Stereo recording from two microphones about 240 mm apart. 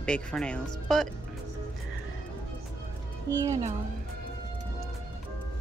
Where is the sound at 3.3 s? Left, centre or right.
Centre.